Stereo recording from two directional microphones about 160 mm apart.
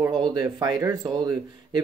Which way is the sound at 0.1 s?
25° right (ahead or behind).